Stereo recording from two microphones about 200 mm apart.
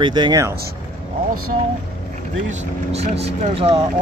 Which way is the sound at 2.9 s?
30° right (ahead or behind).